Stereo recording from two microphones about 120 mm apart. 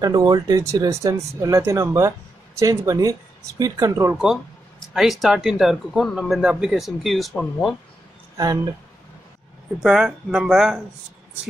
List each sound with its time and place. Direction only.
0.0 s speech: 35° right (ahead or behind)
4.2 s speech: 5° right (ahead or behind)
9.8 s speech: 5° right (ahead or behind)